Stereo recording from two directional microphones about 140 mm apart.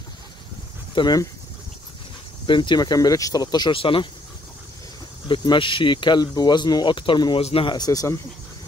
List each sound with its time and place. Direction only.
0.9 s speech: 30° left (ahead or behind)
2.4 s speech: 35° left (ahead or behind)
5.3 s speech: 35° left (ahead or behind)